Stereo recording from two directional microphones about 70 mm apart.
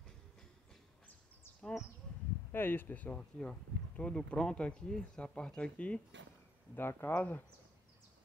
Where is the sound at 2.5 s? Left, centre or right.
Left.